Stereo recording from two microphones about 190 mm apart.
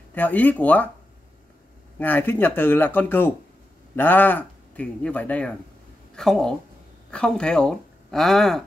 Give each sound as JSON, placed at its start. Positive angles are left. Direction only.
{"t": 0.1, "sound": "speech", "side_deg": 10}
{"t": 2.0, "sound": "speech", "side_deg": 10}